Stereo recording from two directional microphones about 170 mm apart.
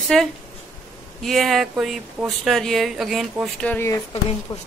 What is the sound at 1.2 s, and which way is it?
A woman's voice, centre (ahead or behind).